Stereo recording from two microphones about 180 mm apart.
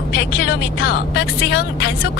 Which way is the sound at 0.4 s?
60° left (ahead or behind).